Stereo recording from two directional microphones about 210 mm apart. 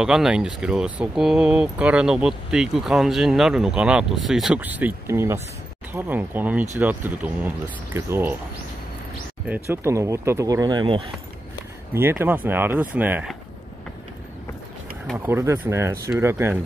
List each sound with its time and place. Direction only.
0.0 s speech: 5° right (ahead or behind)
9.5 s speech: 15° right (ahead or behind)
11.9 s speech: 10° right (ahead or behind)
15.1 s speech: 10° right (ahead or behind)